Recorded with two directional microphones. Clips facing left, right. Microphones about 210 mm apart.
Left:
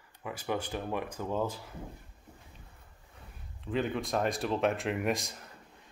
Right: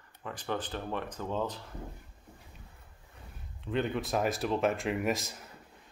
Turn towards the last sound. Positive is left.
turn(degrees=0)  # may be behind; listen again after turning